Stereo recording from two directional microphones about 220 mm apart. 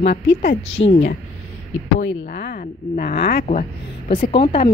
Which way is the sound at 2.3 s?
40° left (ahead or behind).